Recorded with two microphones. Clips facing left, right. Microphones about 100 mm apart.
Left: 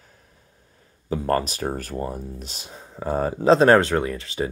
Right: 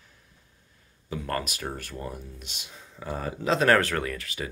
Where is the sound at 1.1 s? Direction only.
35° left (ahead or behind).